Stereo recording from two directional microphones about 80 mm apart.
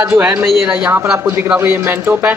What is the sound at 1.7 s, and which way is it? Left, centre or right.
Speech, right.